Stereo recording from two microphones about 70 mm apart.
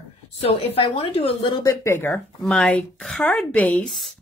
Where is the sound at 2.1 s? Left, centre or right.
Centre.